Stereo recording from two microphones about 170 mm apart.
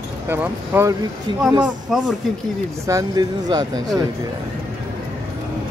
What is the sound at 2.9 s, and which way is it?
Speech, 20° right (ahead or behind).